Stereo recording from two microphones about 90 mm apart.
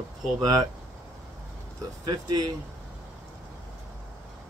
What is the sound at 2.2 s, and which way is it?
Speech, 45° right (ahead or behind).